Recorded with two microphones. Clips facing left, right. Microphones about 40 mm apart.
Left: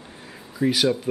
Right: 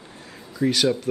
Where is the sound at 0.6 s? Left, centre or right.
Centre.